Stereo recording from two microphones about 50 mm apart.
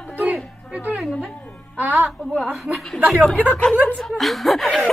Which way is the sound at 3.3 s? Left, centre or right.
Left.